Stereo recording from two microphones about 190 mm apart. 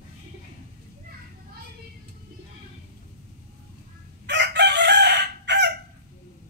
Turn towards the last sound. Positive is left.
turn(degrees=-65)  # may be behind; listen again after turning